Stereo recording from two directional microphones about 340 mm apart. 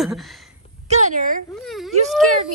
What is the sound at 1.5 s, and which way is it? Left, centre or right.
Speech, centre.